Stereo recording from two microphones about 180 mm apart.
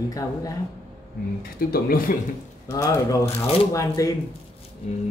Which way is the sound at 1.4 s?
55° left (ahead or behind).